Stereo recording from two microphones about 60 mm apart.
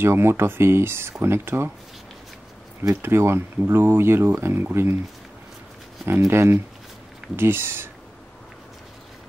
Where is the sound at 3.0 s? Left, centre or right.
Right.